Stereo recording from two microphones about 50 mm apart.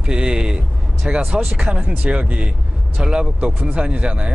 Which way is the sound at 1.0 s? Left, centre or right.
Right.